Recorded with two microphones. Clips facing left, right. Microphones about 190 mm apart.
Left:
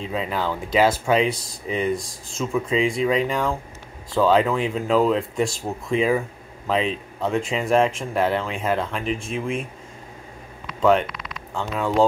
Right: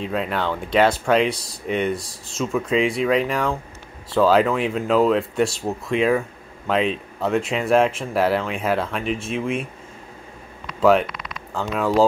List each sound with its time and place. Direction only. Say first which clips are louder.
0.0 s speech: right 2 dB; centre (ahead or behind)
10.8 s speech: right 2 dB; 5° right (ahead or behind)